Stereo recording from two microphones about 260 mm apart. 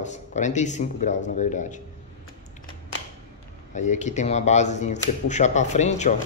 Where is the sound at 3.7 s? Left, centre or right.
Left.